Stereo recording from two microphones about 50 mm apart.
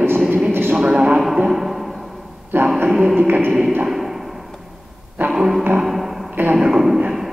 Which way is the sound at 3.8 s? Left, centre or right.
Centre.